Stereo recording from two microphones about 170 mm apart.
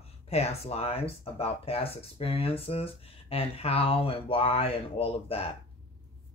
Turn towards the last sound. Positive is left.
turn(degrees=35)  # may be behind; listen again after turning